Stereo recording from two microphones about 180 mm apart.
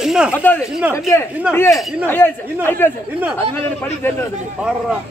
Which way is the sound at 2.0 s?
10° left (ahead or behind).